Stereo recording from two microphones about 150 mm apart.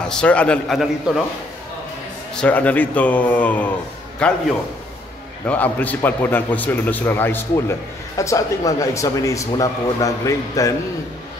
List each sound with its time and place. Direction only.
0.1 s a man's voice: 5° left (ahead or behind)
2.3 s a man's voice: 10° left (ahead or behind)
5.5 s a man's voice: 10° left (ahead or behind)